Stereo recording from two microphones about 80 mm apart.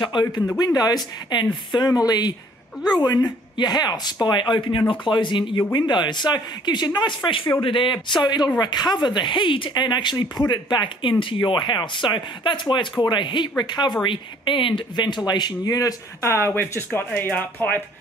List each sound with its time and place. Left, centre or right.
0.0 s speech: left
0.7 s speech: left
1.9 s speech: left
4.3 s speech: left
5.7 s speech: left
7.2 s speech: left
8.2 s speech: left
13.6 s speech: left
14.0 s speech: left
16.2 s speech: left